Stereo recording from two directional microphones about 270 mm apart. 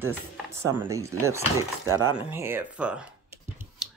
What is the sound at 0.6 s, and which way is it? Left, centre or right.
Speech, centre.